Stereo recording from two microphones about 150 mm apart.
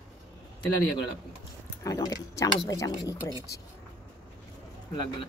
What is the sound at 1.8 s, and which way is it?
Speech, 25° left (ahead or behind).